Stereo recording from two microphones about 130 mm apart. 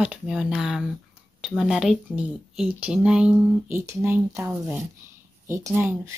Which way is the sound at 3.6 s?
20° right (ahead or behind).